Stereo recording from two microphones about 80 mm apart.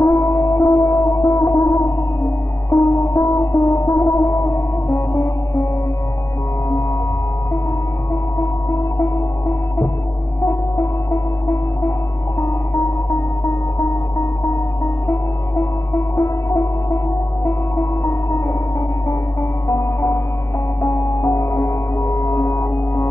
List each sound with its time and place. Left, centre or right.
0.0 s music: left
8.1 s hum: left
10.4 s music: left